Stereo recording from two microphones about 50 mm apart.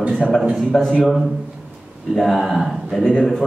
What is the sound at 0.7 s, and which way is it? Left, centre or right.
Speech, centre.